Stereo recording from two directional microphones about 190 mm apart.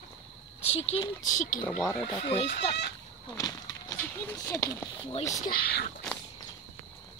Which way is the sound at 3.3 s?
20° left (ahead or behind).